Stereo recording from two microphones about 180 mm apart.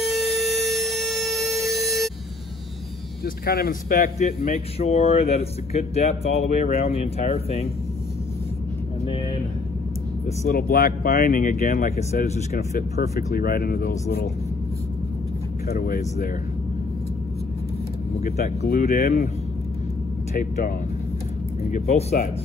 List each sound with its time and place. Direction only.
0.0 s a sound: centre (ahead or behind)
3.4 s speech: 60° left (ahead or behind); by 7.6 s 35° left (ahead or behind)
9.0 s vehicle: 30° left (ahead or behind)
10.5 s speech: 55° left (ahead or behind); by 12.4 s 40° left (ahead or behind)
12.5 s speech: 60° left (ahead or behind)
15.7 s speech: 55° left (ahead or behind)
18.6 s speech: 55° left (ahead or behind)
20.3 s speech: 50° left (ahead or behind)